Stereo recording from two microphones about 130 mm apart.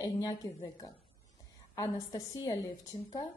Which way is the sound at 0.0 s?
30° left (ahead or behind).